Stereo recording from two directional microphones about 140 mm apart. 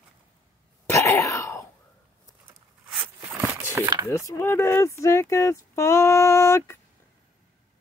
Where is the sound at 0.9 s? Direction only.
20° left (ahead or behind).